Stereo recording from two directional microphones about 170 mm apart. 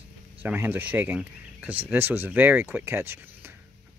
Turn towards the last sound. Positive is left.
turn(degrees=-15)  # may be behind; listen again after turning